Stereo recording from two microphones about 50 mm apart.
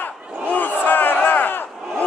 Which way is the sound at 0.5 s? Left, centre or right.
Left.